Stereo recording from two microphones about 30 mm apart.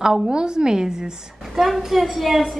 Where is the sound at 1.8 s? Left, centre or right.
Centre.